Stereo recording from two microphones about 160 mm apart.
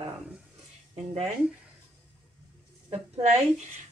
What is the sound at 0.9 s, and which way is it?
Speech, 40° right (ahead or behind).